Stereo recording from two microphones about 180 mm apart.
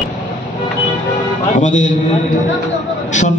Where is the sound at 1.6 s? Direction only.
45° left (ahead or behind).